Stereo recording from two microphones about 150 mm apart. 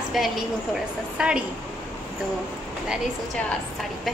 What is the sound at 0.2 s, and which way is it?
A woman's voice, centre (ahead or behind).